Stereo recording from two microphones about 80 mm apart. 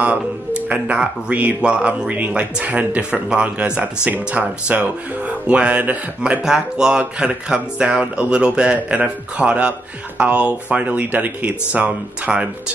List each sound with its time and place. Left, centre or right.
0.0 s speech: centre